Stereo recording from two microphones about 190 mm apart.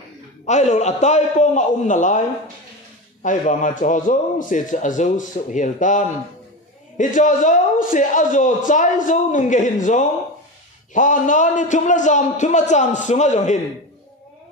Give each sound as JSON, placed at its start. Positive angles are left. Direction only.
{"t": 0.5, "sound": "a man's voice", "side_deg": 40}